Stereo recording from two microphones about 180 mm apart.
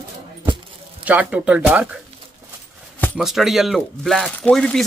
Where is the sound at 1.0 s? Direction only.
10° right (ahead or behind).